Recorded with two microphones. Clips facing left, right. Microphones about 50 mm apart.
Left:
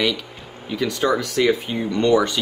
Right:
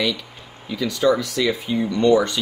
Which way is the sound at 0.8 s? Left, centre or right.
Left.